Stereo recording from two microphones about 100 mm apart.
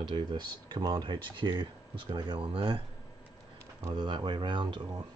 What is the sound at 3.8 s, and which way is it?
Speech, 50° right (ahead or behind).